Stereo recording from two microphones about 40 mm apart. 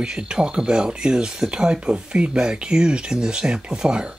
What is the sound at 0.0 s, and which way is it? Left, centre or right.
Speech, right.